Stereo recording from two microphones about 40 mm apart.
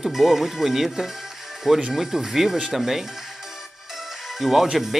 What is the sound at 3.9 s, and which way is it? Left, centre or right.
Music, centre.